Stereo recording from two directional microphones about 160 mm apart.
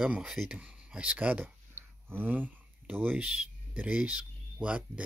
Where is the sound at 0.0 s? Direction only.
5° right (ahead or behind).